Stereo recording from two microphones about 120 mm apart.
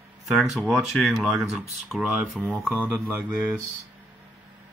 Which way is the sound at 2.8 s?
20° right (ahead or behind).